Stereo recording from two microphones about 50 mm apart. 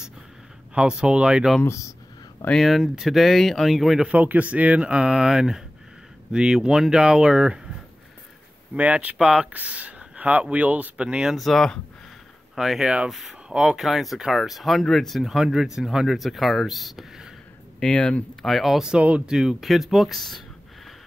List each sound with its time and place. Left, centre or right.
0.7 s speech: centre
1.6 s speech: left
2.6 s speech: centre
4.1 s speech: right
8.7 s speech: right
9.2 s speech: centre
9.5 s speech: right
11.3 s speech: centre
12.5 s speech: centre
13.7 s speech: centre
17.7 s speech: centre
18.4 s speech: centre
18.9 s speech: right
19.3 s speech: centre